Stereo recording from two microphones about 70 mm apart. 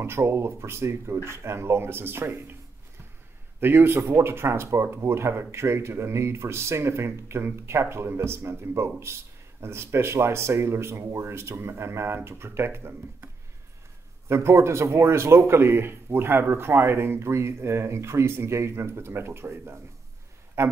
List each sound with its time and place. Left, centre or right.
0.0 s speech: right
3.6 s speech: right
14.3 s speech: right